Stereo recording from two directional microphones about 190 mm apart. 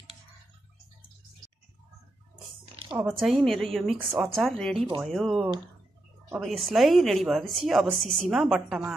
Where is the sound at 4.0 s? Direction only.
15° right (ahead or behind).